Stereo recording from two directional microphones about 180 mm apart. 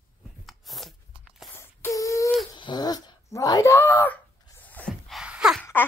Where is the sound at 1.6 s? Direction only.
15° left (ahead or behind); by 5.6 s 5° right (ahead or behind).